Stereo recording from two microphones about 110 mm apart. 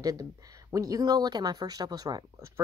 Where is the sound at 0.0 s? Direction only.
30° right (ahead or behind).